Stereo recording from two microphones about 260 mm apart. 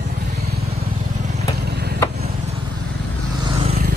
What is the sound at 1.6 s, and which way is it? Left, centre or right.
Vehicle, right.